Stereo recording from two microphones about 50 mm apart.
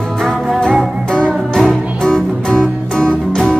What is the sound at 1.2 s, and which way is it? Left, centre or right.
Music, centre.